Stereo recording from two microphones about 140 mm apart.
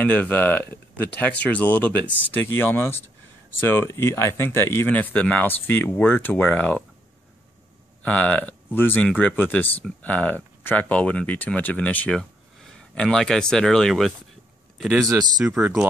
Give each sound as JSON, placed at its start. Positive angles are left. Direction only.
{"t": 0.0, "sound": "speech", "side_deg": 10}
{"t": 8.0, "sound": "speech", "side_deg": 10}
{"t": 15.0, "sound": "speech", "side_deg": -25}
{"t": 15.3, "sound": "speech", "side_deg": -5}